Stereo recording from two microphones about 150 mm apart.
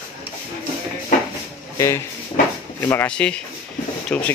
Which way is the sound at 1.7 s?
20° left (ahead or behind).